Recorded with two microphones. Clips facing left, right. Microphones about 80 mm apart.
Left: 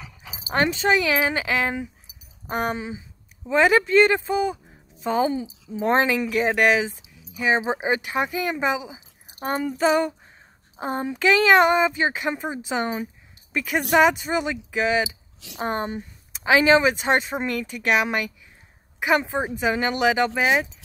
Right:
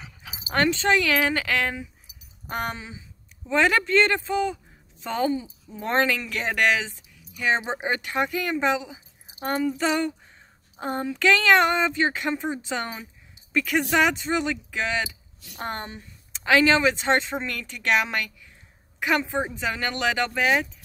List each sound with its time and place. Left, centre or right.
0.6 s speech: centre
2.8 s speech: left
3.4 s speech: centre
5.2 s speech: left
5.8 s speech: centre
10.8 s a sound: centre
11.1 s a woman's voice: centre